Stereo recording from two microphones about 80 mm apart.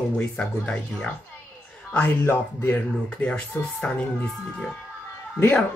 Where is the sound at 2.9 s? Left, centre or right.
Centre.